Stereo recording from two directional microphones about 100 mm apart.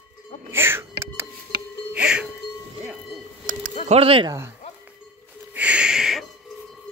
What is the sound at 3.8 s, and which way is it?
Speech, 80° right.